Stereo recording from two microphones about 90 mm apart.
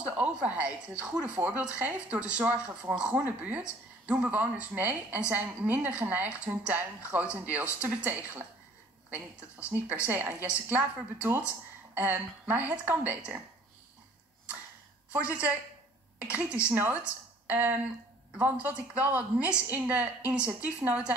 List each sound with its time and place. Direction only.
0.0 s speech: 15° right (ahead or behind)
11.9 s speech: 20° right (ahead or behind)
15.1 s speech: 15° right (ahead or behind)